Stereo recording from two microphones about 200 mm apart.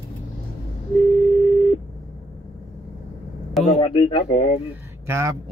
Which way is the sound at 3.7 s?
30° left (ahead or behind).